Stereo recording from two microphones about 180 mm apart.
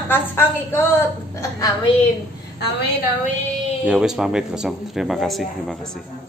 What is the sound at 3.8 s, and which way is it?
Speech, 5° right (ahead or behind).